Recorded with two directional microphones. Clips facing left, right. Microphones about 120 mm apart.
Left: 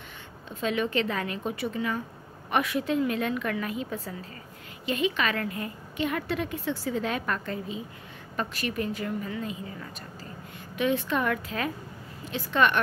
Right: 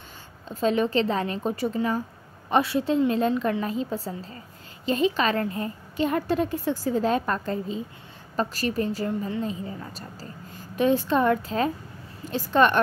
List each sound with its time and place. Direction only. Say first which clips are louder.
0.5 s a woman's voice: right 5 dB; 35° right (ahead or behind)